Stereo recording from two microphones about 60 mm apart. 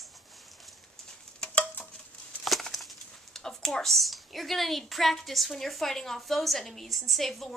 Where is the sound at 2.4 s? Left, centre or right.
Centre.